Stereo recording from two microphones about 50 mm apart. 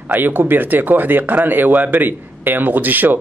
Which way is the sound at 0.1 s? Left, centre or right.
Right.